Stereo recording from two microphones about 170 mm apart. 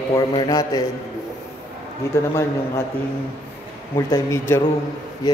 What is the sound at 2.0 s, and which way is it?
Speech, 15° left (ahead or behind).